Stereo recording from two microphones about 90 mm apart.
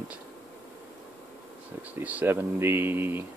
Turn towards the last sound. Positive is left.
turn(degrees=-25)  # may be behind; listen again after turning